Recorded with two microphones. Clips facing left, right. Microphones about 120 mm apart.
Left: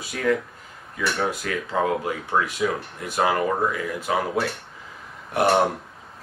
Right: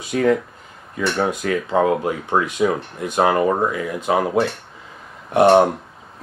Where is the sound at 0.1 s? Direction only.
30° right (ahead or behind).